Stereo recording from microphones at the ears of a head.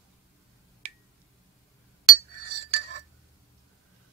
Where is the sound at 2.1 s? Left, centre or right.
Right.